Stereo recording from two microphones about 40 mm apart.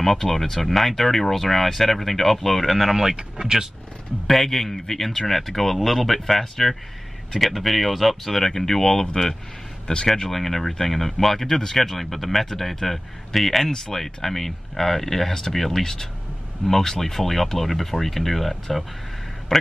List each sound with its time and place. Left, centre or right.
0.0 s speech: centre
4.3 s speech: centre
9.9 s speech: left
10.3 s speech: centre
19.5 s a sound: centre